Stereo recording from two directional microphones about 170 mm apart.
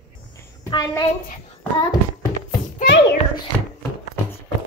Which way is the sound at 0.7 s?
25° left (ahead or behind).